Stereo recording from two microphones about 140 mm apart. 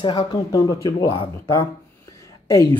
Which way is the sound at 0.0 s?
30° left (ahead or behind).